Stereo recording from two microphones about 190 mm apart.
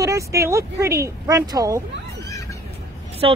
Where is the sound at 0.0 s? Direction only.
15° right (ahead or behind).